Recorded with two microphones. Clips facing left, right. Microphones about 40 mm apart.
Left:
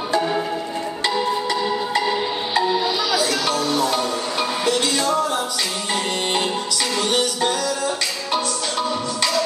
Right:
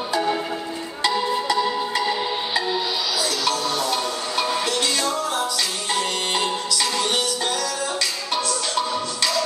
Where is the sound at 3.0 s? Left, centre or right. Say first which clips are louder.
Left 4 dB; left.